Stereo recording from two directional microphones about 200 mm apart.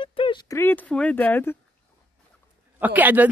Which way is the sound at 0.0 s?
25° left (ahead or behind).